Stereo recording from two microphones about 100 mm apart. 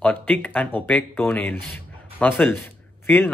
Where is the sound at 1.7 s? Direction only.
15° left (ahead or behind).